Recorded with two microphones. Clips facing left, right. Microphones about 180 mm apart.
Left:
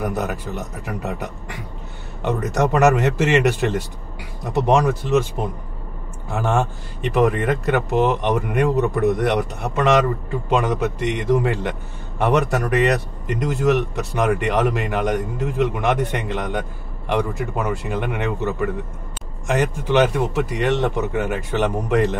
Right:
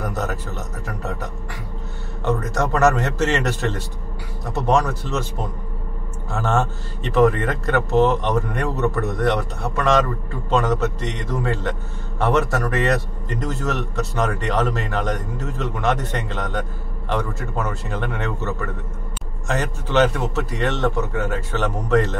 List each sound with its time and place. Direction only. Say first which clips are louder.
0.0 s a man's voice: left 2 dB; 15° left (ahead or behind)
6.3 s a man's voice: left 1 dB; 15° left (ahead or behind)